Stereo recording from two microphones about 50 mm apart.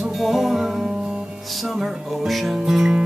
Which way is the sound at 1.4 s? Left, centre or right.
Centre.